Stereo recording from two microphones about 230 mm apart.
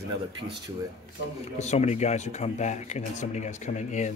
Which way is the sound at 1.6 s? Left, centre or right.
Left.